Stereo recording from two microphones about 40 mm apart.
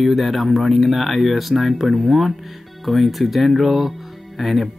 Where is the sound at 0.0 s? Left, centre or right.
Centre.